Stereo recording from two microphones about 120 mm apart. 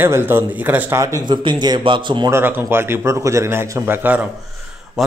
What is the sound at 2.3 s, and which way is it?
A man's voice, 15° right (ahead or behind).